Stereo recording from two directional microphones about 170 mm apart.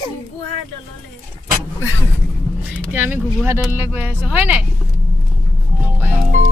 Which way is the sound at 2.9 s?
10° right (ahead or behind).